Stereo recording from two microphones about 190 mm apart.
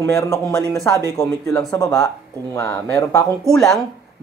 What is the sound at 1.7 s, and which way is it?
Speech, 20° left (ahead or behind).